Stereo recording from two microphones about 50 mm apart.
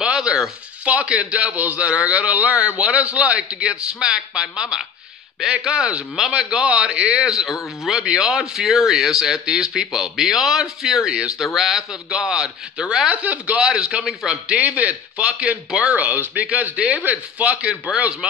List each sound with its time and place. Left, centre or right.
0.0 s a sound: centre
0.9 s a man's voice: right
5.4 s speech: centre
5.7 s a man's voice: right; by 8.0 s centre
8.0 s speech: centre
13.1 s a man's voice: right
13.6 s speech: centre
14.6 s a man's voice: right